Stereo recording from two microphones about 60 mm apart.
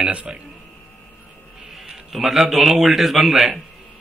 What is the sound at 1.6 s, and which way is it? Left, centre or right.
A man's voice, centre.